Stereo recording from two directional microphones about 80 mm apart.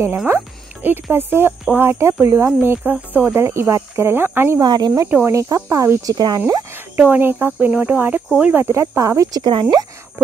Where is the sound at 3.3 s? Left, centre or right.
Right.